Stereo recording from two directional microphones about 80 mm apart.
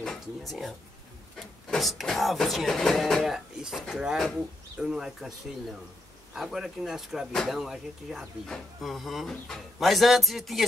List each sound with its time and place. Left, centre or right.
0.0 s speech: centre